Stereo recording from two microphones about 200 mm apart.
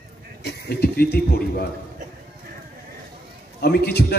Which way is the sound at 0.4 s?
55° left (ahead or behind).